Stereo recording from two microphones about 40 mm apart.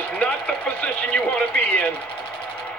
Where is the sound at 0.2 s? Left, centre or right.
Left.